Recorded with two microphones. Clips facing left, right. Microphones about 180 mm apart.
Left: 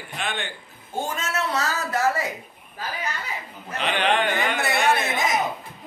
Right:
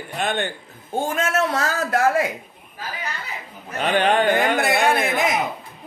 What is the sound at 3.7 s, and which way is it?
Speech, 45° right (ahead or behind).